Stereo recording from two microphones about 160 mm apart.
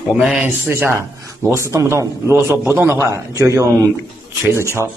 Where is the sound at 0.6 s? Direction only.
15° right (ahead or behind).